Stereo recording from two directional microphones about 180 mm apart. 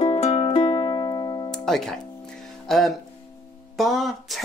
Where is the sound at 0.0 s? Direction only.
30° left (ahead or behind).